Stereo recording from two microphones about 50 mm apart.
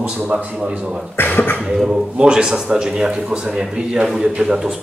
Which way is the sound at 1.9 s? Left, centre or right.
Centre.